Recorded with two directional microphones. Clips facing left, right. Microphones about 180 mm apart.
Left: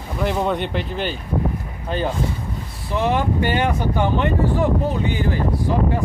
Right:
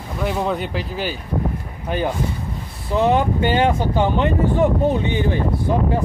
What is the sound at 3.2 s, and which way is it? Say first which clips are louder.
Speech: right 2 dB; 20° right (ahead or behind).